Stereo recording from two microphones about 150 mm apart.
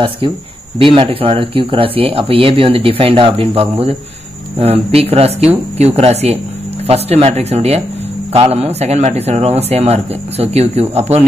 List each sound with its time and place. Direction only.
0.7 s speech: 35° right (ahead or behind)
4.9 s speech: 40° right (ahead or behind)